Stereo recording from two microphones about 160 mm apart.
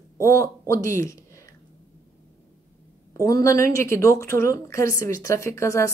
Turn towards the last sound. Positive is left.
turn(degrees=20)  # may be behind; listen again after turning